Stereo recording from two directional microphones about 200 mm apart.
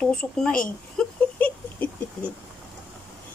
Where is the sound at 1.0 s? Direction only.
Centre (ahead or behind).